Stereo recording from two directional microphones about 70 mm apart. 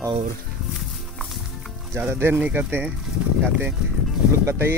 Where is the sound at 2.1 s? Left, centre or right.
Right.